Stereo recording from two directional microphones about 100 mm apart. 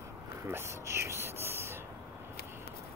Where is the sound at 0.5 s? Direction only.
25° right (ahead or behind).